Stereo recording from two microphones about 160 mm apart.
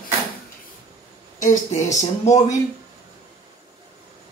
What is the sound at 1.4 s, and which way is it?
Speech, 50° left (ahead or behind).